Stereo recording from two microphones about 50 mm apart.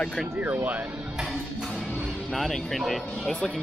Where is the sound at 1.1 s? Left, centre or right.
Centre.